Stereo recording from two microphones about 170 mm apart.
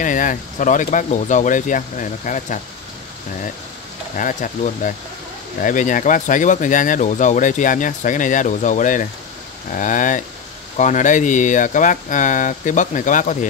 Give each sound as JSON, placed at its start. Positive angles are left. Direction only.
{"t": 0.0, "sound": "speech", "side_deg": 50}
{"t": 4.2, "sound": "speech", "side_deg": 50}